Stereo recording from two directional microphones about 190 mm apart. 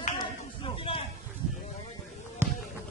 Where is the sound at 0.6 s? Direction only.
30° left (ahead or behind).